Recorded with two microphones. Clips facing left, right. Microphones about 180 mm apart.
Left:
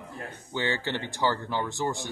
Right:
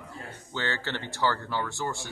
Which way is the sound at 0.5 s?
15° left (ahead or behind).